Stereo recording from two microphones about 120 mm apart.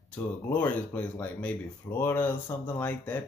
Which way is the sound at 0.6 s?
15° left (ahead or behind).